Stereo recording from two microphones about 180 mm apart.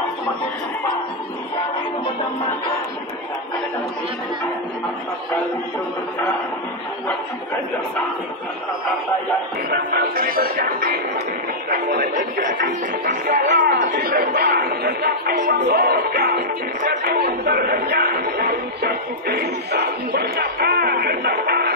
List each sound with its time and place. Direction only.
9.7 s speech: 55° right (ahead or behind)
13.8 s speech: 60° right (ahead or behind)